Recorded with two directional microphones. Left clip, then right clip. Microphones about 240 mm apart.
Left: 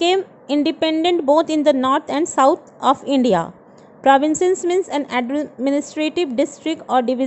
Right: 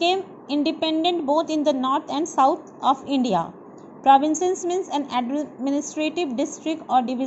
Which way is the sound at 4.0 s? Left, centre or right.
Left.